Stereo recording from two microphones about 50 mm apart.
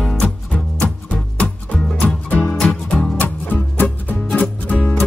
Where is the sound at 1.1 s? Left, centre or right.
Left.